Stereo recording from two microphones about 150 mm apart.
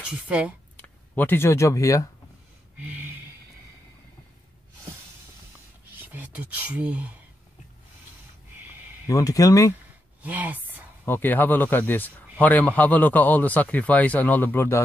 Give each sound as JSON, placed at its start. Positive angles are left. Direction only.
{"t": 0.3, "sound": "speech", "side_deg": -10}
{"t": 0.7, "sound": "speech", "side_deg": 10}
{"t": 2.8, "sound": "a sound", "side_deg": -10}
{"t": 6.1, "sound": "speech", "side_deg": -10}
{"t": 9.0, "sound": "speech", "side_deg": 25}
{"t": 10.2, "sound": "speech", "side_deg": -10}
{"t": 11.1, "sound": "a man's voice", "side_deg": 10}